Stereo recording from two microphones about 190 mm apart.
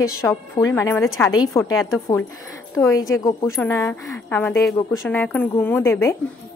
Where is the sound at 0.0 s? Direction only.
15° left (ahead or behind).